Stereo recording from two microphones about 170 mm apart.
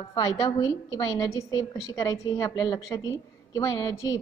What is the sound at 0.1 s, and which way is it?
A woman's voice, 25° left (ahead or behind).